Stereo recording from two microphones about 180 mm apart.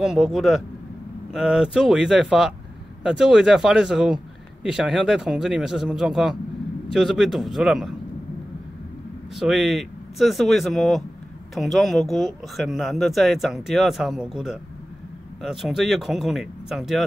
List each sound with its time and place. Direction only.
0.0 s speech: 5° right (ahead or behind)
9.3 s speech: centre (ahead or behind)